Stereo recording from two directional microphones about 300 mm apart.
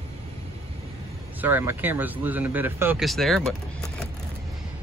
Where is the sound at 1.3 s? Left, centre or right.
Centre.